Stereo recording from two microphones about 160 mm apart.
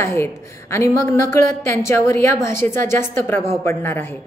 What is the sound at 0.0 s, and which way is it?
A woman's voice, 15° left (ahead or behind).